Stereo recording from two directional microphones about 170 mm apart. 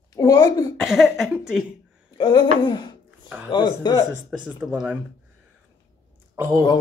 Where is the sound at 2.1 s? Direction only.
25° left (ahead or behind).